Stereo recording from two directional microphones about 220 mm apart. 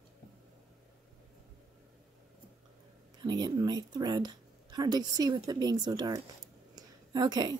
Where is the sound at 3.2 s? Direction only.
20° right (ahead or behind).